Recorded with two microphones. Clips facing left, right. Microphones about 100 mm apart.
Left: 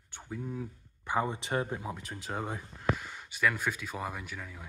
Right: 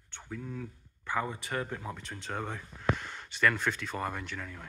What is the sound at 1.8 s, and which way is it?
Speech, 5° left (ahead or behind).